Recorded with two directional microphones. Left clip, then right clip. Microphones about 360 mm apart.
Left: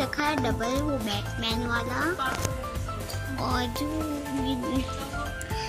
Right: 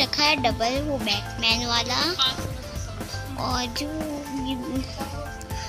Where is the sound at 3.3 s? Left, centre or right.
Centre.